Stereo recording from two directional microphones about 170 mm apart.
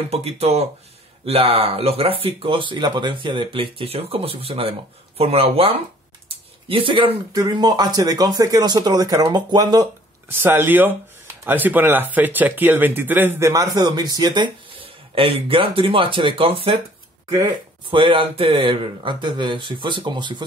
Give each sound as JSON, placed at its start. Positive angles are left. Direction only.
{"t": 0.1, "sound": "speech", "side_deg": -35}
{"t": 10.2, "sound": "speech", "side_deg": -10}
{"t": 17.3, "sound": "speech", "side_deg": -25}